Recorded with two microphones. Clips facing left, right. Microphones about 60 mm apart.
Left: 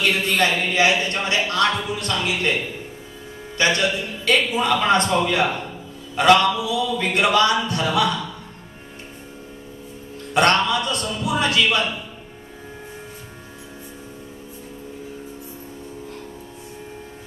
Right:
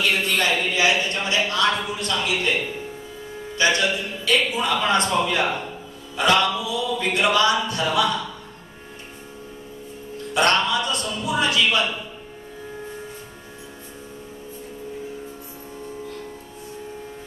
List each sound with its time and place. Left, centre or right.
0.0 s a sound: left
0.7 s a man's voice: left
3.5 s a man's voice: left
6.1 s mantra: left
7.0 s a man's voice: left
10.3 s a man's voice: left